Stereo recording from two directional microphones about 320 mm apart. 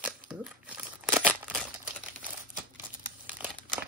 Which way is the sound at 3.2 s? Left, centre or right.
Centre.